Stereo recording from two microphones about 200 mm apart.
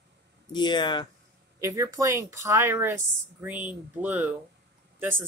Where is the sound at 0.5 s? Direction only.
20° left (ahead or behind).